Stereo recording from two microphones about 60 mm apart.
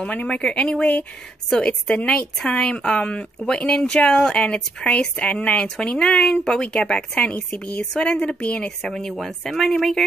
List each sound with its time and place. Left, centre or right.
0.0 s a woman's voice: centre
9.2 s speech: centre